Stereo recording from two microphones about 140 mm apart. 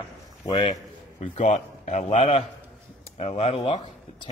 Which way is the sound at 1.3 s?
55° left (ahead or behind).